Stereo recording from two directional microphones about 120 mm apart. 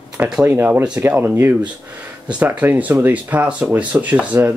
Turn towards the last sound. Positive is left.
turn(degrees=-15)  # may be behind; listen again after turning